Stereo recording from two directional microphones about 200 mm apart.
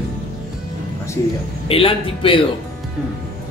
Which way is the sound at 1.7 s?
25° left (ahead or behind).